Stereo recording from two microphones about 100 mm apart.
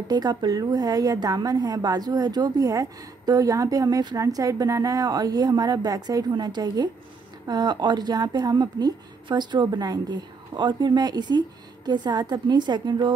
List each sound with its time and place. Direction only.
0.1 s a woman's voice: 40° right (ahead or behind)